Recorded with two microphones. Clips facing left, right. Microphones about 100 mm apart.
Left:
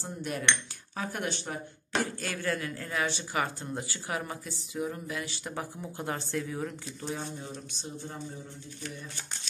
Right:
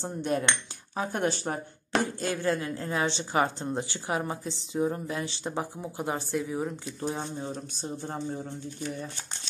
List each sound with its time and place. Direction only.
0.0 s speech: 30° right (ahead or behind)
2.0 s speech: 25° right (ahead or behind)
7.0 s speech: 30° right (ahead or behind)